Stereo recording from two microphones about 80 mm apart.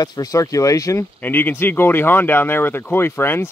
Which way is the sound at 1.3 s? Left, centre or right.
Left.